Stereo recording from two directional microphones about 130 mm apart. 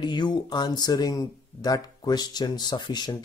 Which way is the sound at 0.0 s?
35° left (ahead or behind).